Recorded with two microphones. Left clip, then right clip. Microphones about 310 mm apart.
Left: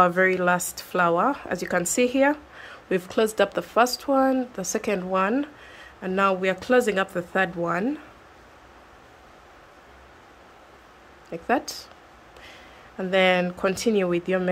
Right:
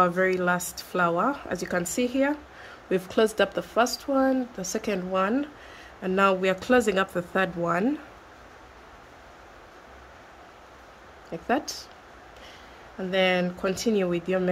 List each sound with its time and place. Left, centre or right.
0.0 s speech: centre
11.2 s speech: centre
13.1 s speech: centre